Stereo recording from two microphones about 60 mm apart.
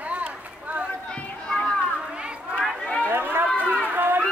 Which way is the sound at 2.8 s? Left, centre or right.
Centre.